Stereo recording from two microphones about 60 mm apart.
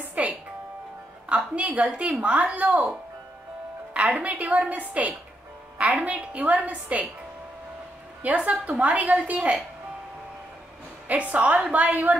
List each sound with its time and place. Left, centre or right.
0.0 s music: right
1.3 s a woman's voice: right
4.2 s a woman's voice: right
8.2 s a woman's voice: right
11.1 s a woman's voice: right